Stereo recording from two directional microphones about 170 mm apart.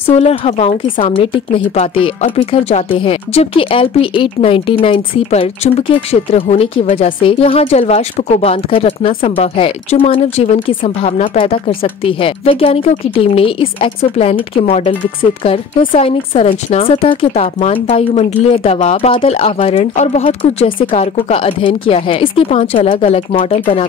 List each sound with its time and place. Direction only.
0.0 s speech: 35° left (ahead or behind)
0.8 s a woman's voice: 50° left (ahead or behind)
1.1 s speech: 30° left (ahead or behind)
16.0 s speech: 35° left (ahead or behind)